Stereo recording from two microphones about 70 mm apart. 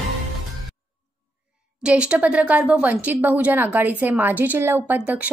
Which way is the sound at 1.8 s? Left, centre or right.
Centre.